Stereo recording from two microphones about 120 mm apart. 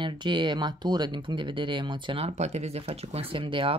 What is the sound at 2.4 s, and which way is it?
Speech, 65° right (ahead or behind).